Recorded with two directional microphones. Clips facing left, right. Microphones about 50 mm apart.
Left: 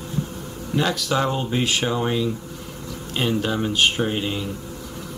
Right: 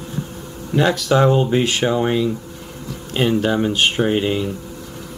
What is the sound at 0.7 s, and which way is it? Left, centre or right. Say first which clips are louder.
Speech: right 6 dB; centre.